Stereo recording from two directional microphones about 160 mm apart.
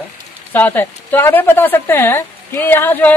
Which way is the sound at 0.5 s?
10° left (ahead or behind).